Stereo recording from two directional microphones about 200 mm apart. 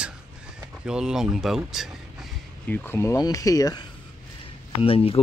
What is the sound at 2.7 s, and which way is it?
Speech, 10° left (ahead or behind).